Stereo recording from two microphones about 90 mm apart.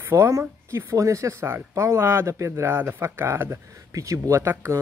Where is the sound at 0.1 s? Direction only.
30° right (ahead or behind).